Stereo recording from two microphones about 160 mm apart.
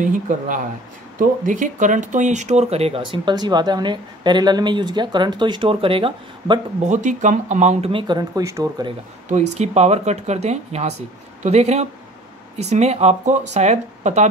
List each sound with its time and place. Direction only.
1.1 s speech: 55° right (ahead or behind); by 6.6 s 30° right (ahead or behind)
6.8 s speech: 50° right (ahead or behind); by 8.8 s 20° right (ahead or behind)
9.3 s speech: 45° right (ahead or behind)